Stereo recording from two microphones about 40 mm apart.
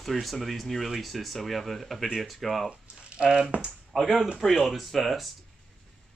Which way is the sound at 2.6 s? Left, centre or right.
Right.